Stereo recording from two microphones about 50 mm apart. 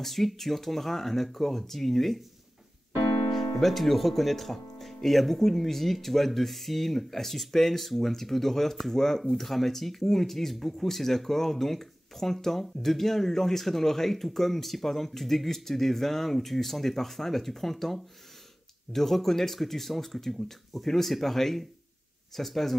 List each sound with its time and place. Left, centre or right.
0.0 s speech: centre
3.3 s speech: centre